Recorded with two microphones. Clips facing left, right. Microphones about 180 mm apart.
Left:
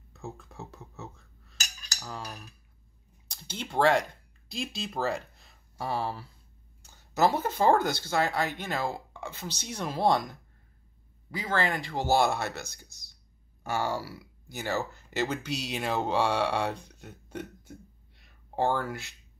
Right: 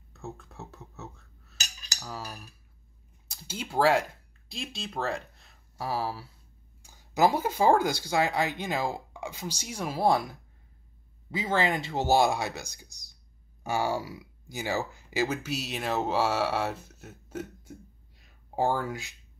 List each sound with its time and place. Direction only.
0.1 s speech: centre (ahead or behind)
11.3 s speech: 20° right (ahead or behind); by 17.7 s 5° right (ahead or behind)
18.2 s a sound: 5° right (ahead or behind)